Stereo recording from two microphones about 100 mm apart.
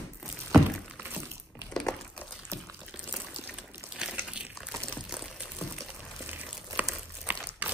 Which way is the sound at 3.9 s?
10° right (ahead or behind).